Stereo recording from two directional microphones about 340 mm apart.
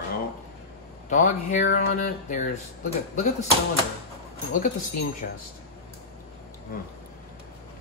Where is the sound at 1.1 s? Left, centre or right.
Left.